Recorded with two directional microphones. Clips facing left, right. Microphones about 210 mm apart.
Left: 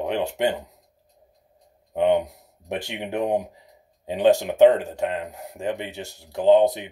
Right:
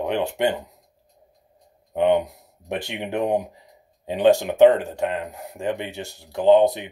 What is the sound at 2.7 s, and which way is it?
Speech, 50° right (ahead or behind).